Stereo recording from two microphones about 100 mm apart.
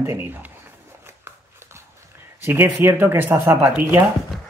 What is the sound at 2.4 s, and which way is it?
Speech, 20° right (ahead or behind).